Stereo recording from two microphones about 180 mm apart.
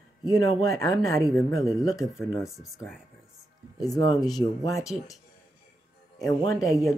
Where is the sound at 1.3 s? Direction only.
Centre (ahead or behind).